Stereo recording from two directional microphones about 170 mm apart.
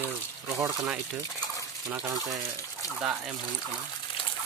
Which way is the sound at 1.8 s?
20° right (ahead or behind).